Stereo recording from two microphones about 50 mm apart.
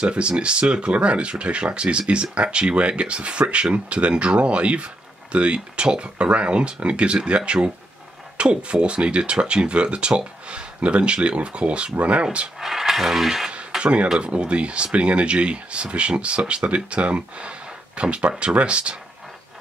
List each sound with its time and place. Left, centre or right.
0.0 s speech: centre
12.5 s speech: centre
13.7 s a sound: centre
14.2 s speech: right